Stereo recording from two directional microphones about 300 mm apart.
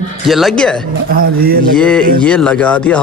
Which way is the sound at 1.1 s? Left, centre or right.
Right.